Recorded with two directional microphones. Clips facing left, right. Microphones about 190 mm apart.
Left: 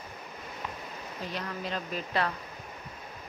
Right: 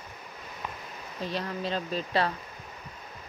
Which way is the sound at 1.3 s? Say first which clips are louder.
Right 4 dB; 30° right (ahead or behind).